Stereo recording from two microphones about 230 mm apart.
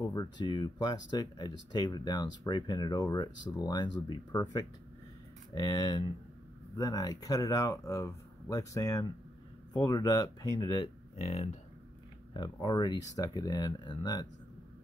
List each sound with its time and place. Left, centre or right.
0.1 s speech: centre
12.4 s speech: centre